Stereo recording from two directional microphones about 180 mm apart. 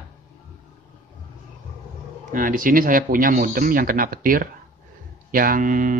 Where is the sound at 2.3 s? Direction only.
50° right (ahead or behind).